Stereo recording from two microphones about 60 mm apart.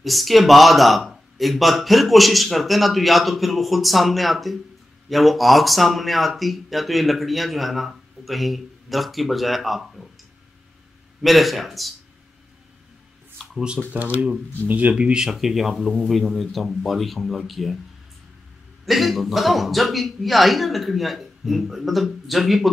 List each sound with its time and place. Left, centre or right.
0.0 s speech: centre
11.2 s speech: centre
13.4 s a sound: centre
13.9 s speech: right
15.2 s speech: centre
18.9 s speech: centre